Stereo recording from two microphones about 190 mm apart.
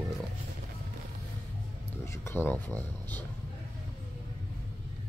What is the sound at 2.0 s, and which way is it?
Speech, 15° left (ahead or behind).